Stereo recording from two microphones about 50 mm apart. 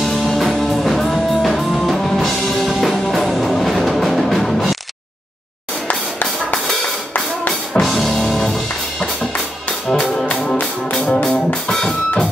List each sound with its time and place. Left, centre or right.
0.0 s music: centre
5.9 s music: left
7.8 s music: centre
10.4 s music: centre